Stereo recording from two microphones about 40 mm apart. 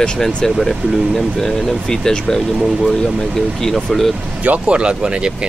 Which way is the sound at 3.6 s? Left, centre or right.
Centre.